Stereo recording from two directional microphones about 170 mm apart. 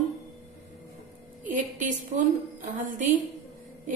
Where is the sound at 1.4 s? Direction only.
50° right (ahead or behind).